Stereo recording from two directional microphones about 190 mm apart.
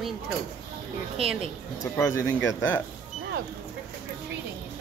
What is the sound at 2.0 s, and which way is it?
Speech, 15° left (ahead or behind).